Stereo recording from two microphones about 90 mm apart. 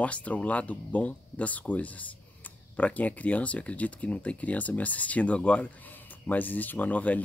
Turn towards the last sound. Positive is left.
turn(degrees=15)  # may be behind; listen again after turning